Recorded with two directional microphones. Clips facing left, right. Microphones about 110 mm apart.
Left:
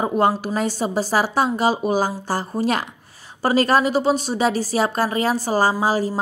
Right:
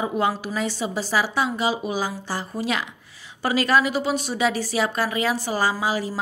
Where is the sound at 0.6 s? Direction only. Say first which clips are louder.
Left 4 dB; 45° left (ahead or behind).